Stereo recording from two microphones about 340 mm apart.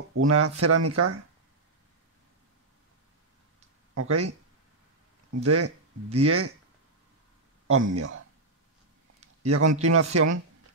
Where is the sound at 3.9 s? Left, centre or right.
Right.